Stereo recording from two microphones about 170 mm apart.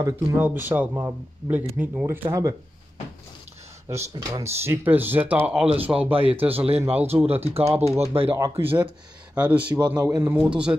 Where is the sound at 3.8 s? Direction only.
20° right (ahead or behind).